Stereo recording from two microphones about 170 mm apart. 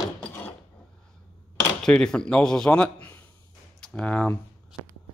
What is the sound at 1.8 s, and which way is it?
Speech, 5° left (ahead or behind).